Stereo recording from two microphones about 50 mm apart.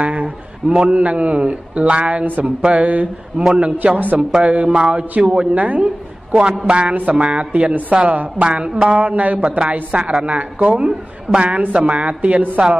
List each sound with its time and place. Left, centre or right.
0.0 s a sound: right
0.7 s a man's voice: centre
3.3 s a man's voice: centre
3.7 s a man's voice: right
4.4 s a man's voice: right